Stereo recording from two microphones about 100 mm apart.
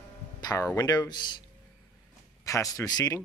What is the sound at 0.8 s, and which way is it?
Speech, 45° left (ahead or behind).